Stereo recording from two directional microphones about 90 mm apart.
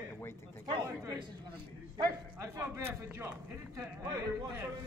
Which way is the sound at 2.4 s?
35° right (ahead or behind).